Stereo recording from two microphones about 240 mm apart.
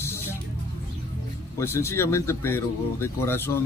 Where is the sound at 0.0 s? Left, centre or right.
Centre.